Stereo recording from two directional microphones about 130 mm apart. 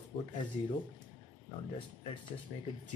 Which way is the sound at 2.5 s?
50° left (ahead or behind).